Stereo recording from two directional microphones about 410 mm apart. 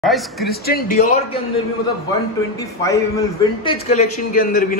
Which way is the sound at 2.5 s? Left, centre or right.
Centre.